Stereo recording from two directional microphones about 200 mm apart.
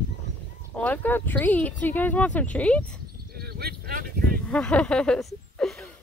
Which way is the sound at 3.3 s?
50° right (ahead or behind).